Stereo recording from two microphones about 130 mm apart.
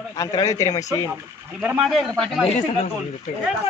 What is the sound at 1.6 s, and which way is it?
Speech, 5° right (ahead or behind).